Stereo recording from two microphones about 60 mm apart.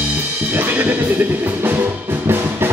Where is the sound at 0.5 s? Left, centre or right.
Right.